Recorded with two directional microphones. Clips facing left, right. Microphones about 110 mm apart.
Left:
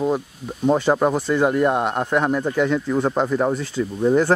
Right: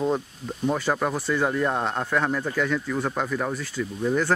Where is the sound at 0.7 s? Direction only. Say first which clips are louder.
Left 8 dB; 25° left (ahead or behind).